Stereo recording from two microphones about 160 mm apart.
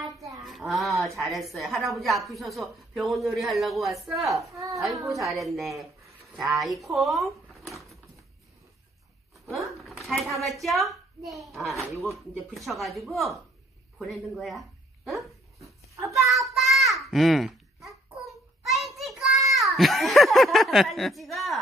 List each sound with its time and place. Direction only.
0.4 s a woman's voice: centre (ahead or behind)
4.4 s a woman's voice: 20° right (ahead or behind)
4.7 s speech: centre (ahead or behind)
9.5 s a sound: centre (ahead or behind)
10.6 s a woman's voice: centre (ahead or behind)
16.1 s a sound: centre (ahead or behind)
18.9 s child singing: centre (ahead or behind)
19.6 s speech: centre (ahead or behind)